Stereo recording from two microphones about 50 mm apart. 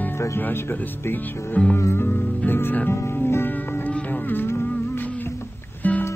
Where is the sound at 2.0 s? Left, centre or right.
Left.